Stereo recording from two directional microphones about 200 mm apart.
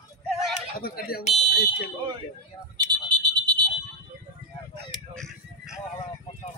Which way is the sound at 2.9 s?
20° right (ahead or behind).